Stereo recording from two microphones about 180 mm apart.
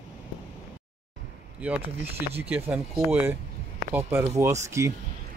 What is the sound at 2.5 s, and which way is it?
Speech, 5° right (ahead or behind).